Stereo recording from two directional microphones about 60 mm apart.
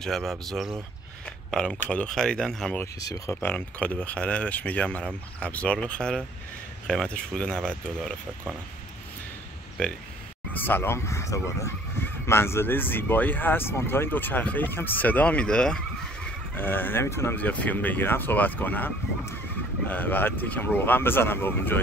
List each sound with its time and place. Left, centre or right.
0.0 s speech: centre
1.2 s speech: centre
3.3 s speech: left; by 8.1 s centre
9.8 s speech: centre
10.5 s speech: left
11.1 s speech: left
12.0 s speech: left
14.7 s speech: left
15.0 s speech: left
16.5 s speech: left
17.0 s speech: left
17.4 s speech: left
19.9 s speech: left